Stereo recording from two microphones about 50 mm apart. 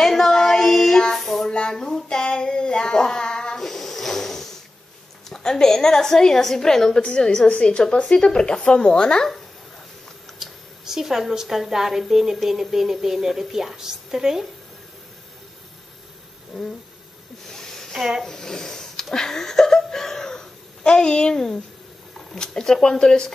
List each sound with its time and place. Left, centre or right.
0.0 s child singing: centre
5.3 s a woman's voice: centre
10.4 s a woman's voice: centre
16.5 s a woman's voice: centre
17.5 s a sound: centre
17.9 s a woman's voice: centre
18.2 s a woman's voice: centre